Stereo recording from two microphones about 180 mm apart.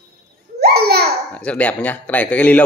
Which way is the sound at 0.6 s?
60° right (ahead or behind).